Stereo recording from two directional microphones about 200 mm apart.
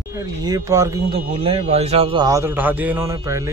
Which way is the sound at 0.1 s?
15° right (ahead or behind).